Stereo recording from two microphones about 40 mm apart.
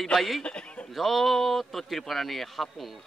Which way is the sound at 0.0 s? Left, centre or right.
Centre.